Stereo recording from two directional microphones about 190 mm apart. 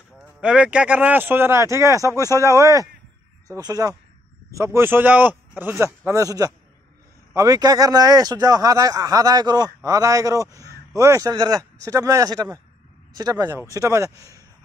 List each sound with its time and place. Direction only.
0.4 s speech: 5° right (ahead or behind)